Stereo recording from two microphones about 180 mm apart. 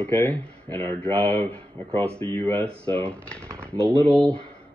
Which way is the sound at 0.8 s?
30° right (ahead or behind).